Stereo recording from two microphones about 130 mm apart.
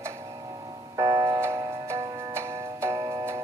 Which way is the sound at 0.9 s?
30° right (ahead or behind).